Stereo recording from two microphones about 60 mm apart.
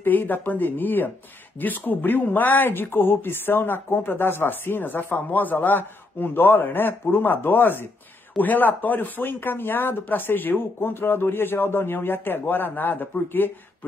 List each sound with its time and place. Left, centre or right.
0.0 s speech: left